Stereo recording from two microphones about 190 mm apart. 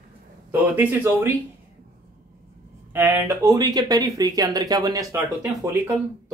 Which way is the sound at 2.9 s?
10° right (ahead or behind).